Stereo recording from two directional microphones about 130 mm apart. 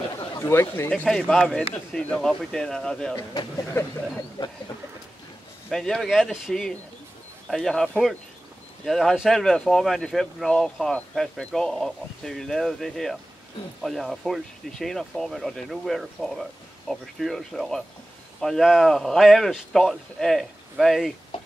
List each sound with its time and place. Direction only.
0.3 s speech: 20° left (ahead or behind); by 3.2 s 5° left (ahead or behind)
5.7 s speech: centre (ahead or behind)